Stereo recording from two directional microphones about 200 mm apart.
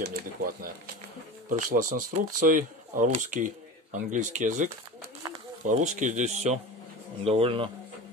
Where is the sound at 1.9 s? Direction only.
40° right (ahead or behind).